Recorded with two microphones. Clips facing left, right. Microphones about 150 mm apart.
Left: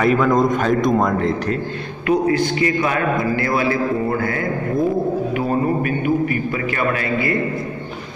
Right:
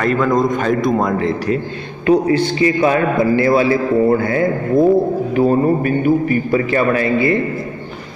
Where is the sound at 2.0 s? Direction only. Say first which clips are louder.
Right 4 dB; 30° right (ahead or behind).